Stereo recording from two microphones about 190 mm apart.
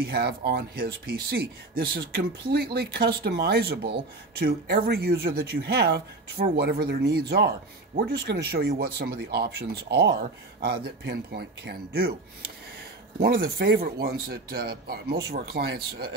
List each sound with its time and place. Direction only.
0.0 s speech: 55° right (ahead or behind)
13.2 s speech: 50° right (ahead or behind)